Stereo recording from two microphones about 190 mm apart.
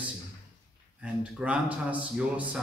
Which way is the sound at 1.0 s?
5° right (ahead or behind).